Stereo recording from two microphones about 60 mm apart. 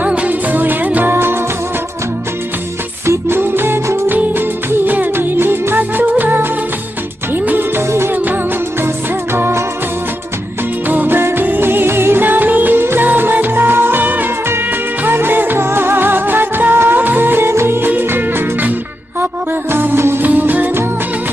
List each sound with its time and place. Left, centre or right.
0.0 s music: right
1.1 s music: right
3.1 s music: right
8.8 s music: right
10.9 s music: right
19.7 s music: right